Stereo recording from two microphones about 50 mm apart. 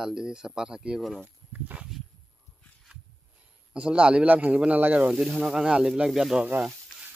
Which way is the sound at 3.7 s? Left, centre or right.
Right.